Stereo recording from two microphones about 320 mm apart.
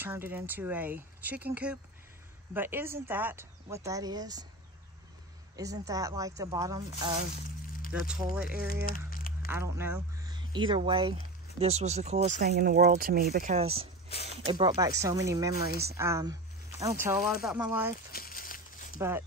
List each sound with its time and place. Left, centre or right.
0.0 s speech: centre
5.6 s speech: centre
8.8 s crumpling: left
9.5 s speech: centre
15.7 s speech: right
16.0 s speech: centre
18.1 s a sound: left
18.9 s speech: centre